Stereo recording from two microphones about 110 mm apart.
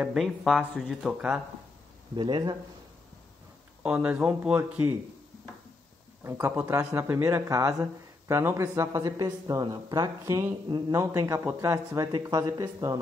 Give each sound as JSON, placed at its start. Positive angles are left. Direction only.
{"t": 0.0, "sound": "speech", "side_deg": -5}
{"t": 2.1, "sound": "speech", "side_deg": -45}
{"t": 3.8, "sound": "speech", "side_deg": -10}
{"t": 6.2, "sound": "speech", "side_deg": -20}